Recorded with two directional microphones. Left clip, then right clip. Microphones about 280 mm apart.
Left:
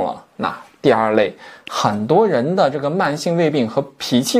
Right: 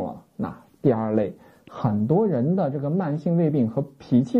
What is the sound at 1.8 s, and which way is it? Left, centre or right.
Speech, centre.